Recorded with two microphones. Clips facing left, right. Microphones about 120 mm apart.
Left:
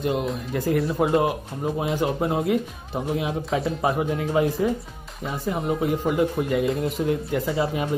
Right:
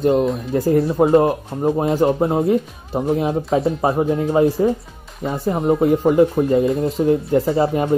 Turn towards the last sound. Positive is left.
turn(degrees=-30)  # may be behind; listen again after turning